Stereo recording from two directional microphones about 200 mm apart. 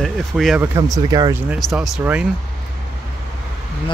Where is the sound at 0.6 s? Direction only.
15° right (ahead or behind).